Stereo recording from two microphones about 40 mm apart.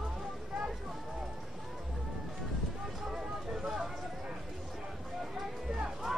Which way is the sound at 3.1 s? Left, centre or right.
Centre.